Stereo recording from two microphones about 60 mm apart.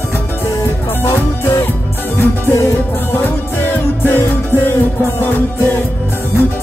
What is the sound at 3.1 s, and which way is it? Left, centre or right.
Music, left.